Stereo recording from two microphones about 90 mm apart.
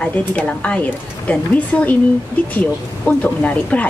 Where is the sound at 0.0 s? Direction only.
10° left (ahead or behind).